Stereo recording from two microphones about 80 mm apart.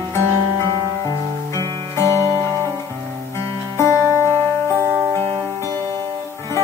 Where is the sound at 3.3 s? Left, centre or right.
Left.